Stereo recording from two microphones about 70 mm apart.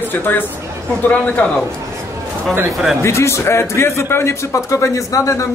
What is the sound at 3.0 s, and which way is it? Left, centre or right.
A man's voice, left.